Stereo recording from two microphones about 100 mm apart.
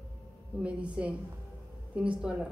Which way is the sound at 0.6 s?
10° right (ahead or behind).